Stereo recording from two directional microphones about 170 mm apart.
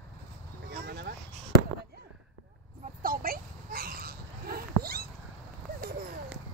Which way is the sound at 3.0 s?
55° right (ahead or behind).